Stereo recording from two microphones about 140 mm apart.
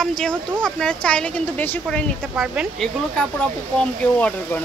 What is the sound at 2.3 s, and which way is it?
Speech, 5° right (ahead or behind).